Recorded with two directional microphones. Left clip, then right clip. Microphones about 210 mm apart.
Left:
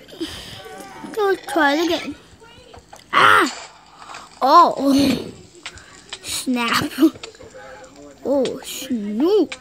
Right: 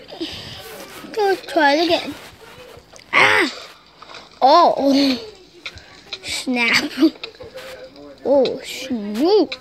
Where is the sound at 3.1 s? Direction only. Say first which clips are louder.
Left 1 dB; 25° left (ahead or behind).